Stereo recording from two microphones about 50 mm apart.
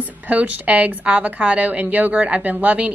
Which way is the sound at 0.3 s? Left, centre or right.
Right.